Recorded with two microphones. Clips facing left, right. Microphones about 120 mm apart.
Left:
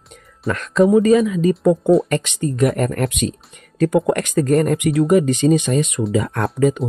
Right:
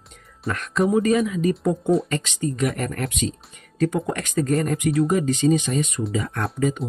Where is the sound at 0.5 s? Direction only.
90° left.